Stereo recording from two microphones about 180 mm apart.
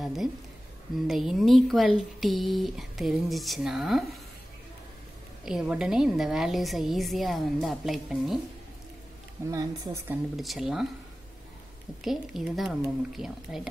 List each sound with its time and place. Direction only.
0.0 s a woman's voice: centre (ahead or behind)
5.4 s a woman's voice: 5° right (ahead or behind)
9.5 s speech: 20° right (ahead or behind)
10.3 s a woman's voice: centre (ahead or behind)
12.0 s a woman's voice: centre (ahead or behind)